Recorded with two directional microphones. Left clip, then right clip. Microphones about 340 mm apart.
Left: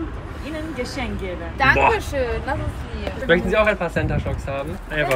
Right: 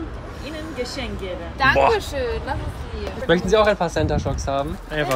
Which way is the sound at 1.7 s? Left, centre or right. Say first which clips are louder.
Even; centre.